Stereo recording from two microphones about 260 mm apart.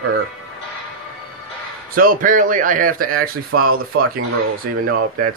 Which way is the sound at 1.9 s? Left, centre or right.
Right.